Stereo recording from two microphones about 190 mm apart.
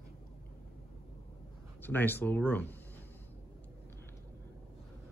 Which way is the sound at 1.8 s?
10° left (ahead or behind).